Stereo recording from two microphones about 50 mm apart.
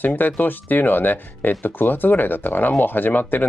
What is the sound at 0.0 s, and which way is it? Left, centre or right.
Speech, left.